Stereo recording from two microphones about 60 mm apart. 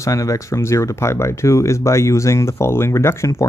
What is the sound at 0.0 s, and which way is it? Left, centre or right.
Speech, left.